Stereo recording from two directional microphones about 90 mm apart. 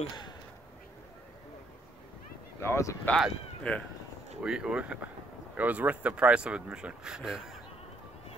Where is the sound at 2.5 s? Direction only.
30° left (ahead or behind).